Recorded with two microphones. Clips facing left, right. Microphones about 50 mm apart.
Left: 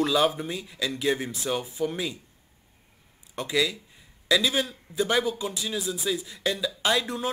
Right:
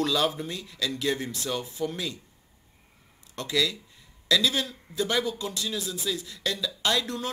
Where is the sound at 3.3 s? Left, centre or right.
Centre.